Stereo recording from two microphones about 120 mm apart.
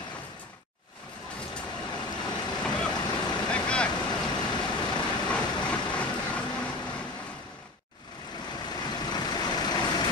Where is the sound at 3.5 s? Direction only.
10° left (ahead or behind).